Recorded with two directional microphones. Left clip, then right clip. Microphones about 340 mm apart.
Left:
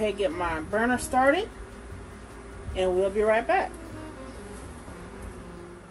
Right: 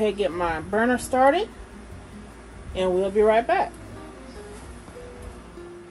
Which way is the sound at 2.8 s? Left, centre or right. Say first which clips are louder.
Right 3 dB; right.